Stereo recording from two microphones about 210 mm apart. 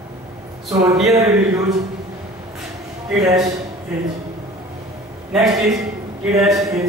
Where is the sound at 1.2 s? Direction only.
15° right (ahead or behind).